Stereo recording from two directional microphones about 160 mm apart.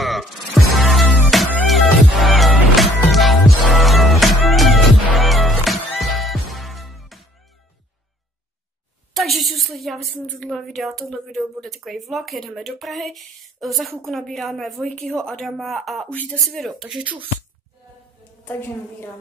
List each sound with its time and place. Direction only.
0.0 s music: centre (ahead or behind)
9.1 s a woman's voice: centre (ahead or behind)
18.4 s a woman's voice: 15° left (ahead or behind)